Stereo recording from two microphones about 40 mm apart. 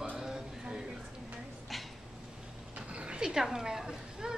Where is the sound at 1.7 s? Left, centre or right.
Centre.